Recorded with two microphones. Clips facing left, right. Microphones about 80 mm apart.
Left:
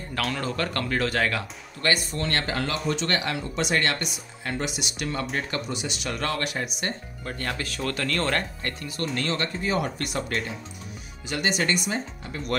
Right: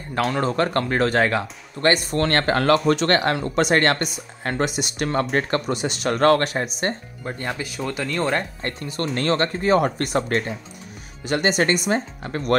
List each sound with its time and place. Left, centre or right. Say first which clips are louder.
0.2 s speech: right 7 dB; right
2.0 s speech: right 8 dB; right
7.2 s speech: right 3 dB; centre
8.6 s speech: right 4 dB; right